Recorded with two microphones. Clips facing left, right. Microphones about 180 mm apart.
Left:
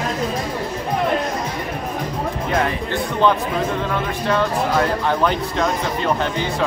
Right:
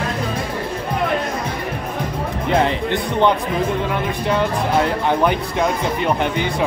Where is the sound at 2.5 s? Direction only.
25° right (ahead or behind).